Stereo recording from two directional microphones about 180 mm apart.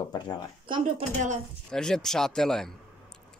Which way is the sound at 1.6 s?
5° left (ahead or behind).